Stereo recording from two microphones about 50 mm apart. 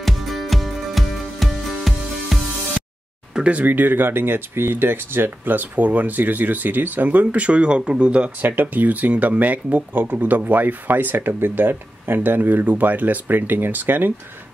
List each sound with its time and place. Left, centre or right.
0.0 s music: centre
3.4 s speech: right
8.4 s speech: right